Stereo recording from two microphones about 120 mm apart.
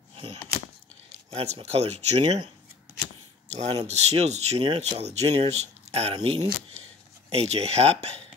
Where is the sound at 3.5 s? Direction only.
65° right (ahead or behind).